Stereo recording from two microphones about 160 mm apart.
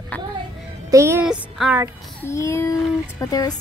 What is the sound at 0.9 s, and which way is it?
Speech, 15° right (ahead or behind).